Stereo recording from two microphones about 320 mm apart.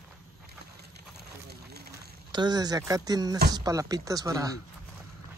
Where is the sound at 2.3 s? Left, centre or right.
Centre.